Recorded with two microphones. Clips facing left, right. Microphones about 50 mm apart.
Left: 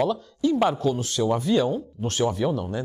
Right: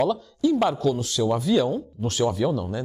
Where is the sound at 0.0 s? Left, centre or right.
Centre.